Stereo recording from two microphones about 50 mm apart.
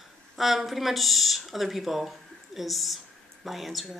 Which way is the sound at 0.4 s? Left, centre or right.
Centre.